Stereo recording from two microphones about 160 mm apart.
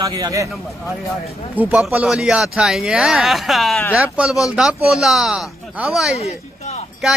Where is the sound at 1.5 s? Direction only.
10° right (ahead or behind).